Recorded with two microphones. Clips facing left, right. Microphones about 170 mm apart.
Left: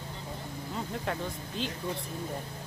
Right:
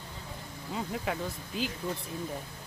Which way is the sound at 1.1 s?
5° right (ahead or behind).